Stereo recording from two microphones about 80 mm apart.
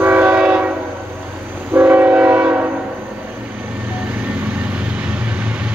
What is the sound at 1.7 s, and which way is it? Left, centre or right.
Train, right.